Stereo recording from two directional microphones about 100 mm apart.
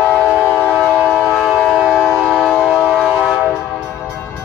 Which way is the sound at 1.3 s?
5° left (ahead or behind).